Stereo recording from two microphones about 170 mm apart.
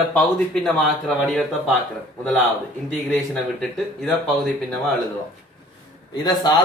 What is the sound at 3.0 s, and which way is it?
A man's voice, centre (ahead or behind).